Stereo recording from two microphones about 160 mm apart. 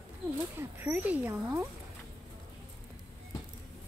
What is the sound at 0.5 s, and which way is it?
Speech, 15° right (ahead or behind).